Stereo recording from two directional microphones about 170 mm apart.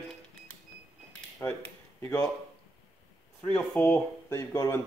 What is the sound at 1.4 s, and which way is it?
Speech, 15° left (ahead or behind).